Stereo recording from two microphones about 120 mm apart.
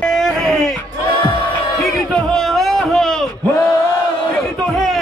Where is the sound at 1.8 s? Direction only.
Centre (ahead or behind).